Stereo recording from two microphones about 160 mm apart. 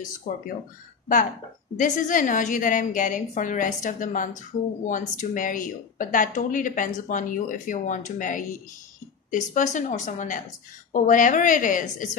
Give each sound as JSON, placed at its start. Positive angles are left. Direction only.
{"t": 0.3, "sound": "speech", "side_deg": 65}
{"t": 1.8, "sound": "a woman's voice", "side_deg": 55}